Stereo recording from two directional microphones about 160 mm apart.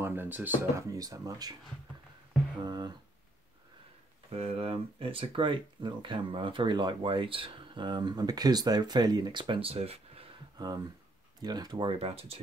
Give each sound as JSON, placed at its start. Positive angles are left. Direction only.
{"t": 0.0, "sound": "speech", "side_deg": -15}
{"t": 2.6, "sound": "speech", "side_deg": -25}
{"t": 4.3, "sound": "speech", "side_deg": -35}
{"t": 11.4, "sound": "speech", "side_deg": -25}